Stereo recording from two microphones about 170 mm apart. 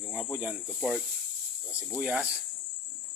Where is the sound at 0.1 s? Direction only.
5° right (ahead or behind).